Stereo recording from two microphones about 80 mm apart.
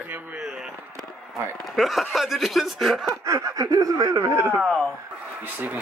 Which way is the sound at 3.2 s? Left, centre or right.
Right.